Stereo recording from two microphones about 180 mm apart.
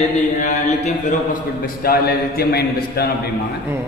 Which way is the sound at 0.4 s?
40° left (ahead or behind).